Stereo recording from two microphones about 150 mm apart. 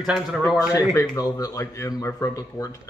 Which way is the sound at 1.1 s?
20° left (ahead or behind).